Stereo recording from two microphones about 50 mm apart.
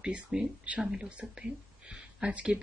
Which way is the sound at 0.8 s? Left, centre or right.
Centre.